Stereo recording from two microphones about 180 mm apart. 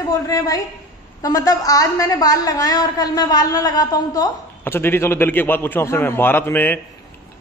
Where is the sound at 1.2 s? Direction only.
20° left (ahead or behind).